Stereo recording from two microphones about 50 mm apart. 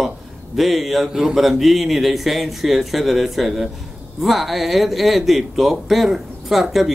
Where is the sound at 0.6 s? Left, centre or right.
Centre.